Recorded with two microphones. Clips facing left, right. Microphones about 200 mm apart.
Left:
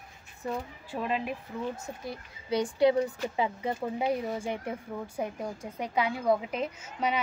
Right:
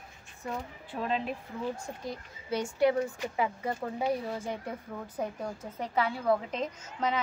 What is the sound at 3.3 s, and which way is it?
A child's voice, 20° left (ahead or behind).